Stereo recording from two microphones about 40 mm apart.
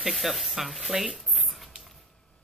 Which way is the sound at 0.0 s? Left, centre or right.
Centre.